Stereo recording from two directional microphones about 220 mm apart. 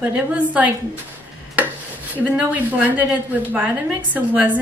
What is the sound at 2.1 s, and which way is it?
A woman's voice, 5° right (ahead or behind).